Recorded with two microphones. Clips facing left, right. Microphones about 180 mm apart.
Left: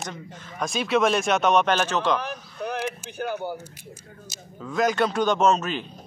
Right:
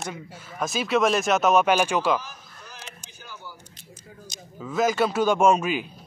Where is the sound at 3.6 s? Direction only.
5° left (ahead or behind); by 5.9 s 10° right (ahead or behind).